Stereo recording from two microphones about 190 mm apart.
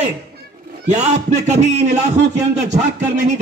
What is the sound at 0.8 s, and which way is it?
Speech, 40° right (ahead or behind).